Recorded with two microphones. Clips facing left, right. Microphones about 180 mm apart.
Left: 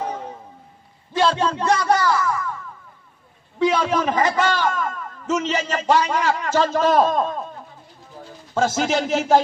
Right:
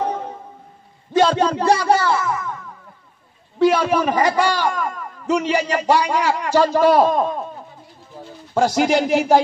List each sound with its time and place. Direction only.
1.1 s speech: 40° right (ahead or behind); by 2.5 s 20° right (ahead or behind)
3.5 s a man's voice: 10° right (ahead or behind)
8.5 s a man's voice: 15° right (ahead or behind)